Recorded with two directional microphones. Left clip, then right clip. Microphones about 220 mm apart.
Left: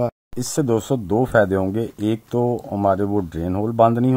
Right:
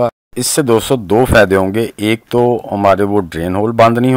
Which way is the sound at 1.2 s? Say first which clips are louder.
Right 7 dB; 25° right (ahead or behind).